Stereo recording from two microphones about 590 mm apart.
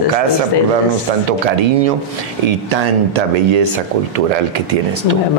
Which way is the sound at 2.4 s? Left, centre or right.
Right.